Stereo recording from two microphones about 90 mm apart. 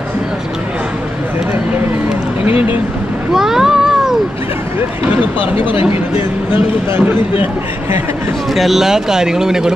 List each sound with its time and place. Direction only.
3.3 s cat: 5° right (ahead or behind)
5.4 s speech: 70° left (ahead or behind)
6.5 s speech: 25° right (ahead or behind)
8.5 s speech: 5° right (ahead or behind)